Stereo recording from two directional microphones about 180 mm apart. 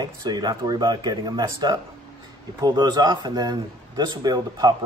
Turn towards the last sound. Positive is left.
turn(degrees=-20)  # may be behind; listen again after turning